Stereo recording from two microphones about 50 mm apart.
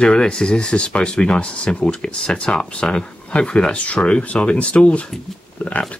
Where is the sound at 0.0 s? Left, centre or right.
Centre.